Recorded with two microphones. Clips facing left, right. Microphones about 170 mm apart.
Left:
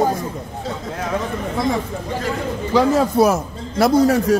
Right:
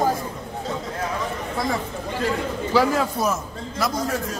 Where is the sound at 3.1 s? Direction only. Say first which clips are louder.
Left 9 dB; 70° left (ahead or behind).